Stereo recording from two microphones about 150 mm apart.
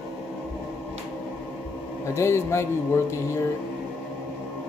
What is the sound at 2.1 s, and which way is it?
Speech, 20° left (ahead or behind).